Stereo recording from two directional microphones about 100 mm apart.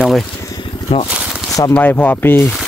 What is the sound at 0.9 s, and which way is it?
Speech, 65° left (ahead or behind).